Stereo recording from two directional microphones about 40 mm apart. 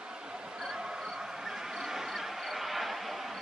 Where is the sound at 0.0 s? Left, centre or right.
Right.